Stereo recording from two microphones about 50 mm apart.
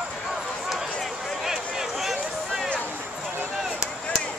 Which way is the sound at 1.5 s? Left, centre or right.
Centre.